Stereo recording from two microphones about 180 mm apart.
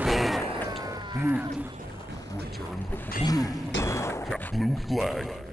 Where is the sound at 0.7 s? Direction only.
20° right (ahead or behind).